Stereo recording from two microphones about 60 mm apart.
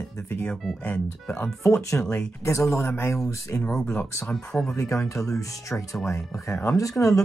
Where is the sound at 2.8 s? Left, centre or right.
Left.